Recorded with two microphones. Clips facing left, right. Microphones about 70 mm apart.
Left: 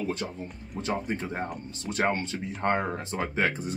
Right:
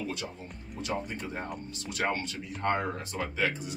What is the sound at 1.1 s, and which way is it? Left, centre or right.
Speech, left.